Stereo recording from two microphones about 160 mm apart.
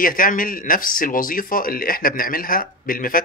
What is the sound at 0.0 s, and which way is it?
A man's voice, 60° left (ahead or behind).